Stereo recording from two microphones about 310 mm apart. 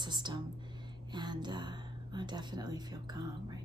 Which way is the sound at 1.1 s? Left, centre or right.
Centre.